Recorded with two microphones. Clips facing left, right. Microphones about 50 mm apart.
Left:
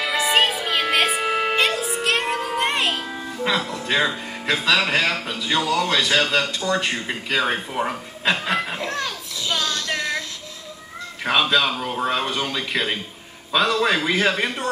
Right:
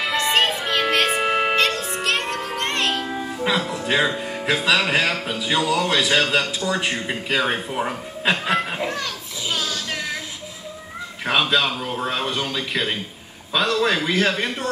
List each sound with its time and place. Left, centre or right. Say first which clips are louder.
0.1 s music: left 1 dB; centre
1.1 s music: right 2 dB; centre
1.5 s music: even; centre
3.1 s speech: right 1 dB; centre
9.5 s music: left 2 dB; centre
11.2 s speech: left 1 dB; centre